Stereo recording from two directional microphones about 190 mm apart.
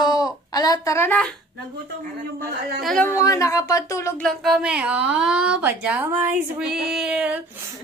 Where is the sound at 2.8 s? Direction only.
5° left (ahead or behind).